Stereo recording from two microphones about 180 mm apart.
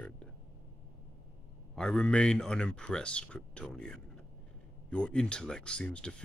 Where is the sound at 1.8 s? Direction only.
5° left (ahead or behind).